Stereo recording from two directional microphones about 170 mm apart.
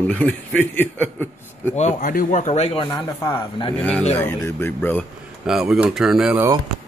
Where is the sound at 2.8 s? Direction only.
25° left (ahead or behind).